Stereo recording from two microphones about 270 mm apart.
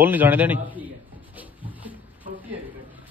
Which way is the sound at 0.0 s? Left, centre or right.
Centre.